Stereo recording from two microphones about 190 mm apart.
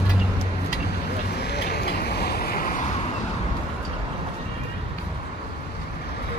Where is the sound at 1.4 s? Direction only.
60° left (ahead or behind).